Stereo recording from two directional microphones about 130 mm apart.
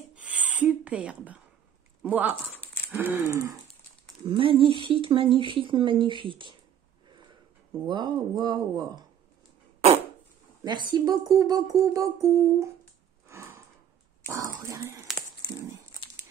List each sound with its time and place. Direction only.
0.1 s a sound: 10° right (ahead or behind)
2.0 s speech: 10° right (ahead or behind)
2.9 s humming: 15° right (ahead or behind)
4.3 s speech: 45° right (ahead or behind)
7.9 s speech: 35° right (ahead or behind)
10.6 s speech: 35° right (ahead or behind)
11.8 s humming: 25° right (ahead or behind)
13.3 s a sound: 20° right (ahead or behind)
14.3 s speech: 25° right (ahead or behind)